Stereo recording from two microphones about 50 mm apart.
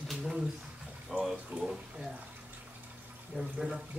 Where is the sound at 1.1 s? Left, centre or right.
Centre.